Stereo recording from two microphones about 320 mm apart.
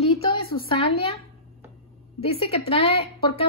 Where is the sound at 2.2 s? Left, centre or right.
Centre.